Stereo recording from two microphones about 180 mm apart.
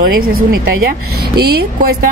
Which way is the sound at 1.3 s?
60° right (ahead or behind).